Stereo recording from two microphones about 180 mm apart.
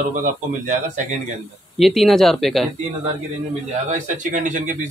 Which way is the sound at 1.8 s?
Centre (ahead or behind).